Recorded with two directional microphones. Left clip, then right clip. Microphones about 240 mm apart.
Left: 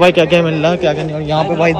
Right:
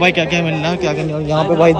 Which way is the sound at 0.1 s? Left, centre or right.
Centre.